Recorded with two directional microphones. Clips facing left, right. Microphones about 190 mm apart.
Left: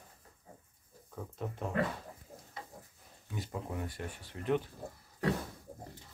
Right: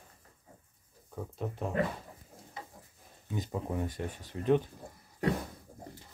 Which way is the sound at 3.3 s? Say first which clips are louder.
Right 5 dB; 20° right (ahead or behind).